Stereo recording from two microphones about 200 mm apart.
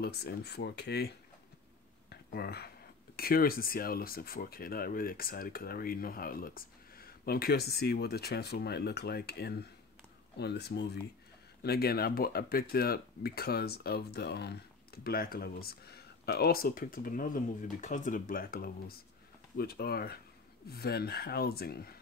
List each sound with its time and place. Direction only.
0.0 s speech: 55° left (ahead or behind)
2.0 s a sound: 50° left (ahead or behind)
3.2 s speech: 50° left (ahead or behind)